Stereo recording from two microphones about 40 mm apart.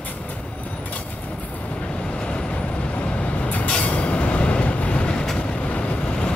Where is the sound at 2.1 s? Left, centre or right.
Left.